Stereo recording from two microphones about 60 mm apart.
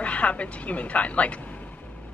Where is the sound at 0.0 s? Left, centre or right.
Left.